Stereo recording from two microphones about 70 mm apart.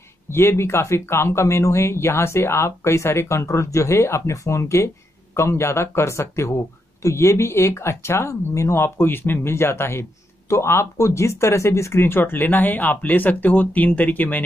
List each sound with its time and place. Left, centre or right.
0.3 s speech: left